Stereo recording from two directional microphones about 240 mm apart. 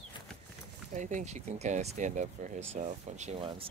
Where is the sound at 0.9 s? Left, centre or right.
Right.